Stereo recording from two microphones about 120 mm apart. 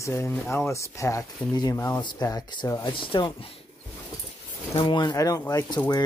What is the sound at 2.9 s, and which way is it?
Speech, 45° left (ahead or behind).